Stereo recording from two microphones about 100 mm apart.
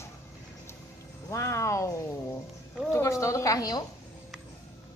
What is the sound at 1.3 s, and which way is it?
A woman's voice, 30° left (ahead or behind).